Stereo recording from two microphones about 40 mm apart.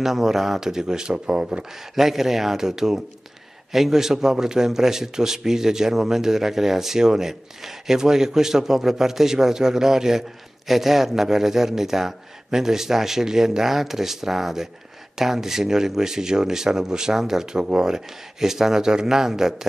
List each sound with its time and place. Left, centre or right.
0.0 s a man's voice: centre
1.7 s a man's voice: centre